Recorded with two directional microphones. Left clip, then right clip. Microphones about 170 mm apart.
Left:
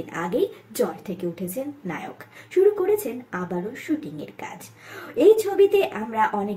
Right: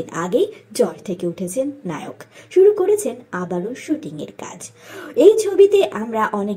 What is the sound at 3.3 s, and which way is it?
Speech, 20° right (ahead or behind).